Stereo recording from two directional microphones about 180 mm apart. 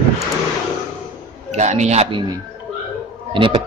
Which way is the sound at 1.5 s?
40° right (ahead or behind).